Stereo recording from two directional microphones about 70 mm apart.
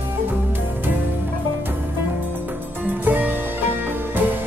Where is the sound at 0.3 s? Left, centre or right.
Right.